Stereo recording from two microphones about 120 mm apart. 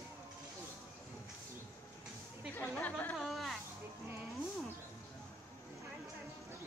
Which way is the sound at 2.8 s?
15° left (ahead or behind).